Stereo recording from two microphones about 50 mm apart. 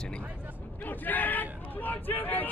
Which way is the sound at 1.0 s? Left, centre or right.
Left.